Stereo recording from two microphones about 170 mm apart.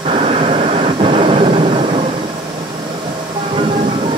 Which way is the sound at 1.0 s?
30° right (ahead or behind).